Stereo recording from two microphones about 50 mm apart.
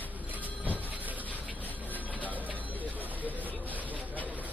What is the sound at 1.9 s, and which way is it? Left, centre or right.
Music, left.